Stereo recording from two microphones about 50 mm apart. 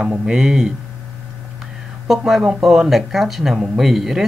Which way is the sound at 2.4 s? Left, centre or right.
Centre.